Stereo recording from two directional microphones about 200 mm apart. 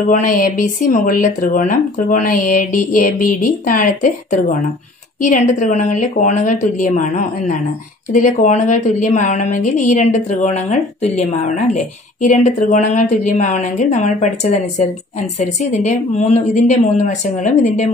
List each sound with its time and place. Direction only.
0.0 s a woman's voice: 45° left (ahead or behind)